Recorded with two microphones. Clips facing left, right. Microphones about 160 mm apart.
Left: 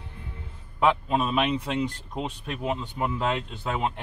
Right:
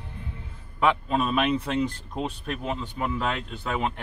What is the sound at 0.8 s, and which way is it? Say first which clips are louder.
Speech: even; 10° left (ahead or behind).